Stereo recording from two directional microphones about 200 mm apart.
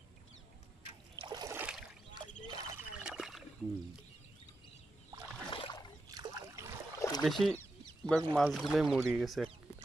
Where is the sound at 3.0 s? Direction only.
5° right (ahead or behind).